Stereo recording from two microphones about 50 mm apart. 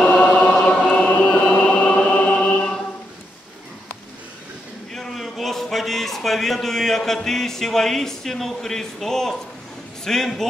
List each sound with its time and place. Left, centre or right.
0.3 s choir: left
1.2 s choir: centre
4.9 s a sound: centre
7.2 s speech: centre